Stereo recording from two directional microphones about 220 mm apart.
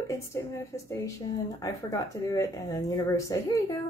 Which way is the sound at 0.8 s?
15° left (ahead or behind).